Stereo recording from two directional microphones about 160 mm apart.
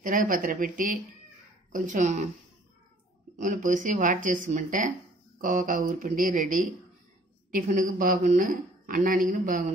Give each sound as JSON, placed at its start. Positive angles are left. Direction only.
{"t": 0.0, "sound": "a woman's voice", "side_deg": -55}
{"t": 3.3, "sound": "a woman's voice", "side_deg": -55}